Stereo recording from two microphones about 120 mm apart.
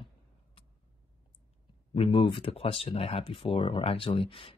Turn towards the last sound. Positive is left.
turn(degrees=50)  # may be behind; listen again after turning